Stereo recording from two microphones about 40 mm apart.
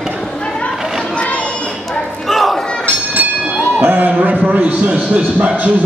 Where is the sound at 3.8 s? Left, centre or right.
Right.